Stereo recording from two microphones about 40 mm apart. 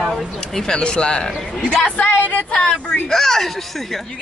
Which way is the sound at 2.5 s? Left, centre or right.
Left.